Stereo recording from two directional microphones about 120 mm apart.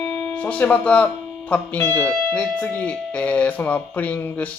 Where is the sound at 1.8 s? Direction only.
20° left (ahead or behind).